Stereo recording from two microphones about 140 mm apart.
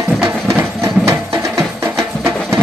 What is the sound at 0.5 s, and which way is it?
Music, 20° right (ahead or behind).